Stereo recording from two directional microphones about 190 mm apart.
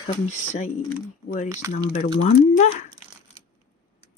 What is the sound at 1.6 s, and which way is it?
Speech, 15° right (ahead or behind).